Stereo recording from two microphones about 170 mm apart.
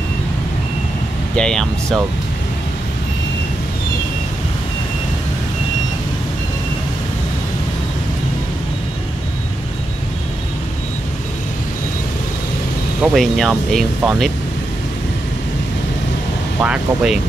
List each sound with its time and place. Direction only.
1.3 s speech: 5° left (ahead or behind)
13.0 s speech: centre (ahead or behind)
16.6 s speech: 5° right (ahead or behind)